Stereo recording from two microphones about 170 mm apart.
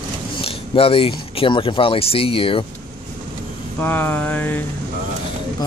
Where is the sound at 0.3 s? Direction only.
35° left (ahead or behind).